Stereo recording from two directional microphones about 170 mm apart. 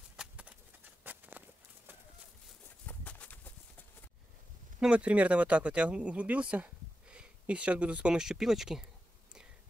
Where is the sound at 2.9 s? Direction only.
10° left (ahead or behind).